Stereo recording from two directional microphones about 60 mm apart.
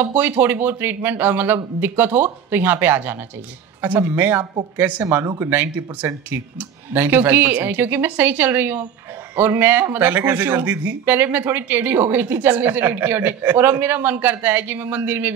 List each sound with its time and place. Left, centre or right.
0.1 s speech: right
5.0 s speech: right